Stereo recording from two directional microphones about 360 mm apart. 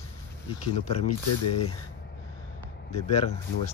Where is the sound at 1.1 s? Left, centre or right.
Left.